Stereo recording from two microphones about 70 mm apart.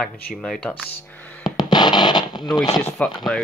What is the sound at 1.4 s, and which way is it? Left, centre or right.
Music, left.